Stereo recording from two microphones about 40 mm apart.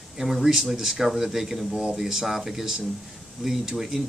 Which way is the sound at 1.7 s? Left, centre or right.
Centre.